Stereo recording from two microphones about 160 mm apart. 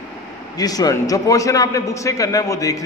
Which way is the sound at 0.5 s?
25° left (ahead or behind).